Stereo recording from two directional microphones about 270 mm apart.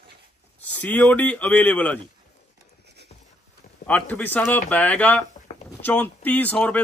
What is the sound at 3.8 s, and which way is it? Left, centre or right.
Speech, centre.